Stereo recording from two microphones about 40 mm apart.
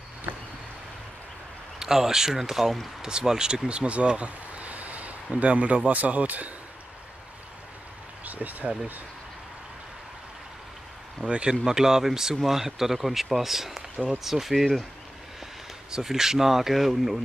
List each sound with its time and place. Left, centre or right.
1.8 s speech: centre; by 6.5 s right
8.3 s speech: right
11.2 s speech: right
11.6 s speech: centre
15.9 s speech: centre